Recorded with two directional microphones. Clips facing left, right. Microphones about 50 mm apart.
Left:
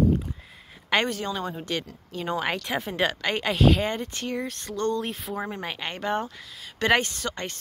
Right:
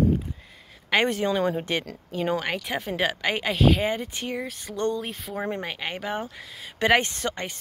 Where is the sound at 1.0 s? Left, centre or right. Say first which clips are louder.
Right 6 dB; right.